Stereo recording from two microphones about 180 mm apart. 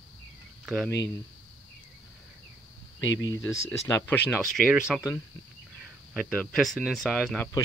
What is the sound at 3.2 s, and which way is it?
Speech, 15° left (ahead or behind).